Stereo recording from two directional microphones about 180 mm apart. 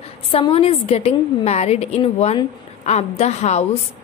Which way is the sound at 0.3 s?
30° left (ahead or behind).